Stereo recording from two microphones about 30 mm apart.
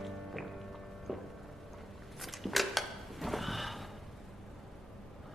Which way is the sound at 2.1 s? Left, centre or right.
Centre.